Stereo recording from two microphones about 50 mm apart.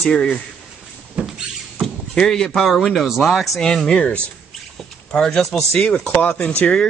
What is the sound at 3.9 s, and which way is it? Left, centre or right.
Speech, left.